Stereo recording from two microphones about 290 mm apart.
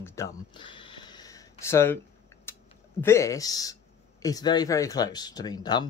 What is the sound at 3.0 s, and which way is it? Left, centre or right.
Speech, centre.